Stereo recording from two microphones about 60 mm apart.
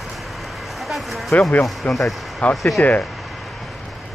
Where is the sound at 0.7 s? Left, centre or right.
Centre.